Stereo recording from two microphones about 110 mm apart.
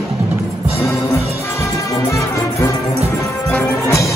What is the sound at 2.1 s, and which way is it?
Music, 30° left (ahead or behind).